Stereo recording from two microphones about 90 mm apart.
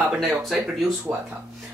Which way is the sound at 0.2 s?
Centre (ahead or behind).